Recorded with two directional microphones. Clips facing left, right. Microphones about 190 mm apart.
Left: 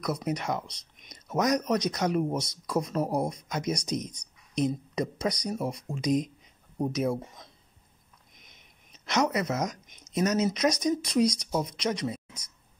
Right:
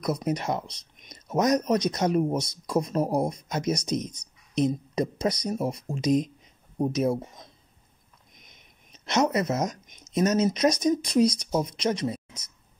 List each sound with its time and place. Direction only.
0.0 s speech: 20° right (ahead or behind)
9.0 s speech: 25° right (ahead or behind)